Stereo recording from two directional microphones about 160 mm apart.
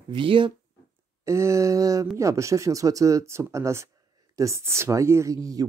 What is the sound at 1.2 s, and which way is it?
Speech, 20° right (ahead or behind).